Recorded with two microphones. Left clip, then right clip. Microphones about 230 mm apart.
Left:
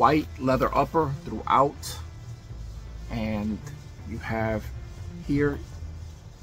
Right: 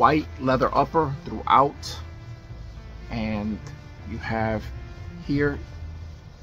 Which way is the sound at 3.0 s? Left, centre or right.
Centre.